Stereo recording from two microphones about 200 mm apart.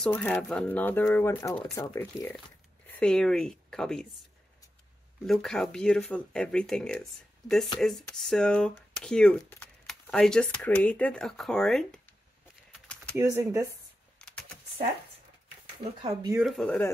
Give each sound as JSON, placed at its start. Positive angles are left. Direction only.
{"t": 0.0, "sound": "speech", "side_deg": 5}
{"t": 3.0, "sound": "speech", "side_deg": 5}
{"t": 5.2, "sound": "speech", "side_deg": 0}
{"t": 12.7, "sound": "typing", "side_deg": 5}
{"t": 13.1, "sound": "speech", "side_deg": -15}
{"t": 14.1, "sound": "typing", "side_deg": 5}
{"t": 16.0, "sound": "speech", "side_deg": -25}
{"t": 16.3, "sound": "speech", "side_deg": 0}